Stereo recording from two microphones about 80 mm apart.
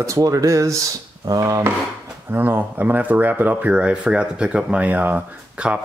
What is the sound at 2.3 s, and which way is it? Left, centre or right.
Speech, right.